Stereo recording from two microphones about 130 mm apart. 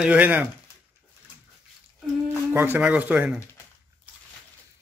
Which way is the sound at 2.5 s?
15° right (ahead or behind).